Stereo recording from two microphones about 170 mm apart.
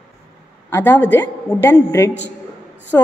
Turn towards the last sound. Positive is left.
turn(degrees=15)  # may be behind; listen again after turning